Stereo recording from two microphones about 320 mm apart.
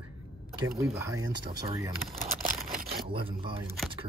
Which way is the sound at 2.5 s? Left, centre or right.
Right.